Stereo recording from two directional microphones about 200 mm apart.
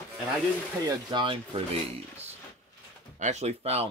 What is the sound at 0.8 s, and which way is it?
Speech, 25° right (ahead or behind).